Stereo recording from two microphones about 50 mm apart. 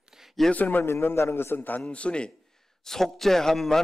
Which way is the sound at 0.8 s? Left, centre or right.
Left.